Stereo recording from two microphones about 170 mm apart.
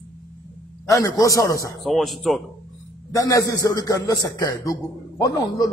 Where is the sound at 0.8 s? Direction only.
20° left (ahead or behind).